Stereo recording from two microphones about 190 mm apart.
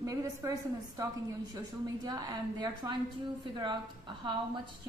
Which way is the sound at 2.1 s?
20° right (ahead or behind).